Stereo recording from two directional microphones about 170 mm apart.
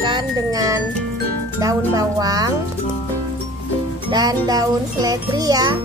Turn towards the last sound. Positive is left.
turn(degrees=-20)  # may be behind; listen again after turning